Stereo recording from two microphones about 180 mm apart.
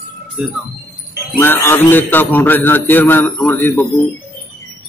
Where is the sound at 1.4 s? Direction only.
10° left (ahead or behind).